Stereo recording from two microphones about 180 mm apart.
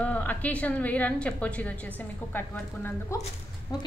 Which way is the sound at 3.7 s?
20° left (ahead or behind).